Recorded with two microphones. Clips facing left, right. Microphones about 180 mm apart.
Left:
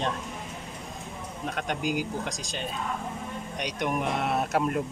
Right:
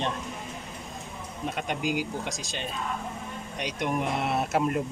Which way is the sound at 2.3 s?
Centre (ahead or behind).